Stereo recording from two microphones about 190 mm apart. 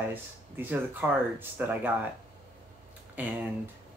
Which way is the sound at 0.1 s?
10° right (ahead or behind).